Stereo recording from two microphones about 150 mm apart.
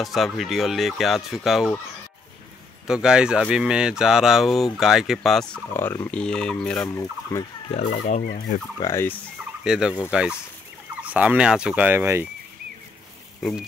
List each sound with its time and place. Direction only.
0.0 s speech: centre (ahead or behind)
2.9 s speech: 5° right (ahead or behind)
5.5 s speech: 15° left (ahead or behind)
6.9 s fowl: 20° left (ahead or behind)
7.8 s speech: 90° left
8.1 s fowl: 65° left (ahead or behind)
8.8 s fowl: 25° left (ahead or behind)
9.7 s speech: 5° right (ahead or behind)
11.0 s fowl: 10° right (ahead or behind)
13.4 s speech: centre (ahead or behind)